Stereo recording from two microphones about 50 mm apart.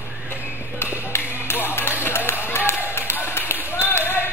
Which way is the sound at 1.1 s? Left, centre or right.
Left.